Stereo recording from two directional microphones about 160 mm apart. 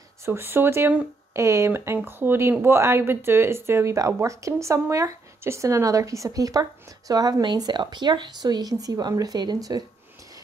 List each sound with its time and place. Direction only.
0.2 s speech: 15° right (ahead or behind)